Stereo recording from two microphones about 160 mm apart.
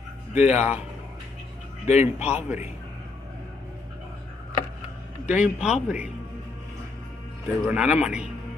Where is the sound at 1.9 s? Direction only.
45° left (ahead or behind).